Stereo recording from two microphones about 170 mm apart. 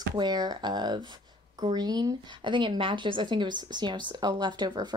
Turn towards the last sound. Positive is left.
turn(degrees=-25)  # may be behind; listen again after turning